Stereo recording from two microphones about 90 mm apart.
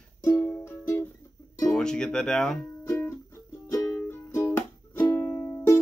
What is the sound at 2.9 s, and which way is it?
Music, 30° left (ahead or behind).